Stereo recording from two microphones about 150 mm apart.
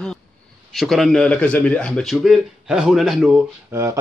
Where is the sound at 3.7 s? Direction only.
20° right (ahead or behind).